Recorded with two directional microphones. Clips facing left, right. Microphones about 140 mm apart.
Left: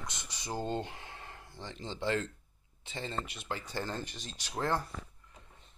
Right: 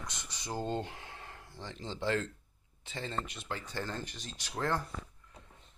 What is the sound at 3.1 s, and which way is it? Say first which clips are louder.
Speech: even; 10° left (ahead or behind).